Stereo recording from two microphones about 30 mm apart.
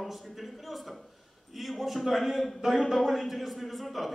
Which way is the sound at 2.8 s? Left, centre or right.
Centre.